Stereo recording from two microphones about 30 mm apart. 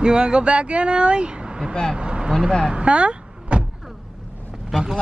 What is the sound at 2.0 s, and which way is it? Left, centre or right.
Vehicle, right.